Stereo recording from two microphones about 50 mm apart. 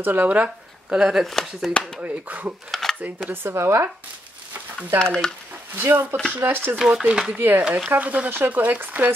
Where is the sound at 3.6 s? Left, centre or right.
Right.